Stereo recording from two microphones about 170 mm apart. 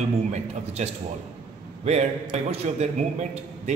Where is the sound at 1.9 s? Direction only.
40° right (ahead or behind).